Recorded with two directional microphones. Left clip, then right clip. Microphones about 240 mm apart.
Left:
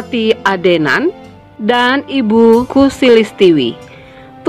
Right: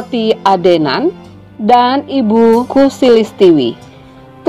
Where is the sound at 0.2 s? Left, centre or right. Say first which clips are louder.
Right 2 dB; left.